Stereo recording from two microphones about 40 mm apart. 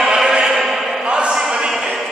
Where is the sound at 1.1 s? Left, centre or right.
Right.